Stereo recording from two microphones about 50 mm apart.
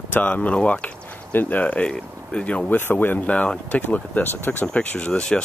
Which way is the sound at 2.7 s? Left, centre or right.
Left.